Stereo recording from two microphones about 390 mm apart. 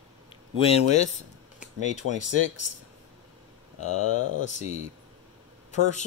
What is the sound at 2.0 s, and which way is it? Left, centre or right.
Speech, right.